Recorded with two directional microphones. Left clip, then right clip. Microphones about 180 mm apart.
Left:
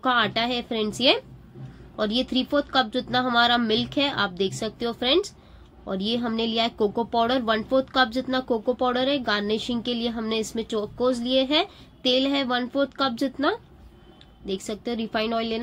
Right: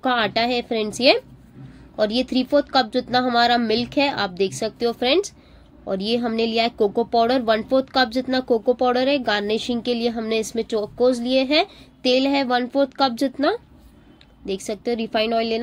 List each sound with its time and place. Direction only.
0.0 s speech: 40° right (ahead or behind)